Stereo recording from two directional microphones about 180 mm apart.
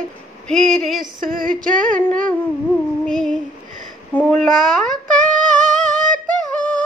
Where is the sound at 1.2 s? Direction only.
50° right (ahead or behind).